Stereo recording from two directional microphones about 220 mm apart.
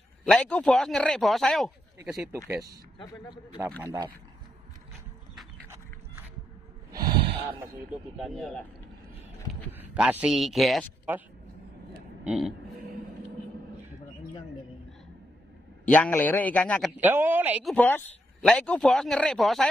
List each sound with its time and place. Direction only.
0.2 s speech: 5° left (ahead or behind); by 2.8 s 15° right (ahead or behind)
3.0 s a man's voice: 20° left (ahead or behind)
3.8 s speech: 15° right (ahead or behind)
6.9 s snort: 20° right (ahead or behind)
8.2 s speech: centre (ahead or behind)
9.7 s speech: 5° right (ahead or behind)
12.3 s speech: centre (ahead or behind)
15.8 s a man's voice: 5° left (ahead or behind)
17.0 s speech: 10° right (ahead or behind)
17.7 s speech: 10° left (ahead or behind)